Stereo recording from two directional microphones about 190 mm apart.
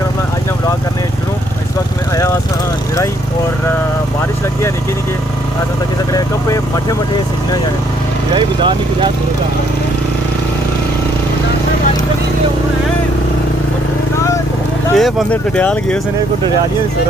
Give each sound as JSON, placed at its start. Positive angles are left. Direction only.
{"t": 8.4, "sound": "vehicle", "side_deg": -25}
{"t": 15.0, "sound": "speech", "side_deg": 0}